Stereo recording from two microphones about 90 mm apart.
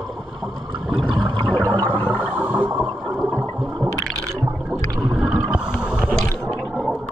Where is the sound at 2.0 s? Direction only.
20° left (ahead or behind).